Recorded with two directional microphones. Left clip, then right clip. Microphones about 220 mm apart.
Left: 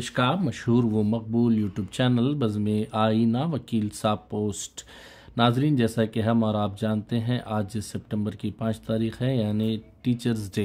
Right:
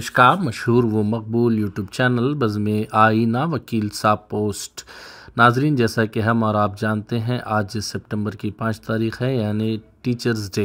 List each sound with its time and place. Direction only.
0.0 s speech: 30° right (ahead or behind)